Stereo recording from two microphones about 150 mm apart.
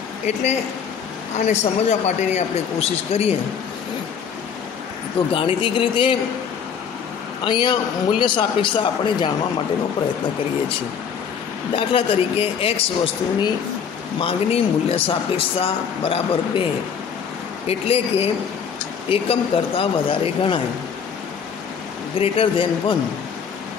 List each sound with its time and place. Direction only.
1.4 s speech: 50° left (ahead or behind)
5.3 s speech: 35° left (ahead or behind)
7.4 s speech: 30° left (ahead or behind)
11.7 s speech: 40° left (ahead or behind)
17.6 s speech: 40° left (ahead or behind)
22.1 s speech: 40° left (ahead or behind)